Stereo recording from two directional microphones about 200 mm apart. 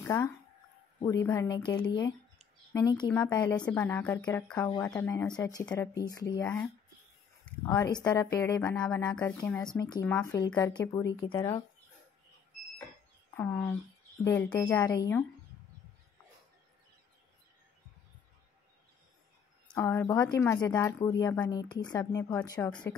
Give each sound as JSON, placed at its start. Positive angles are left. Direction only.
{"t": 0.0, "sound": "speech", "side_deg": 15}
{"t": 7.6, "sound": "speech", "side_deg": 20}
{"t": 9.8, "sound": "speech", "side_deg": 20}
{"t": 13.4, "sound": "speech", "side_deg": 10}
{"t": 14.8, "sound": "speech", "side_deg": 20}
{"t": 19.7, "sound": "speech", "side_deg": 10}